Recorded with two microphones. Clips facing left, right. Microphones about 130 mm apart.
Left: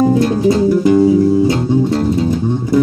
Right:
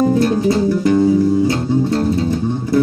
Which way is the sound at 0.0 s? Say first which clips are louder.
Left 2 dB; 20° left (ahead or behind).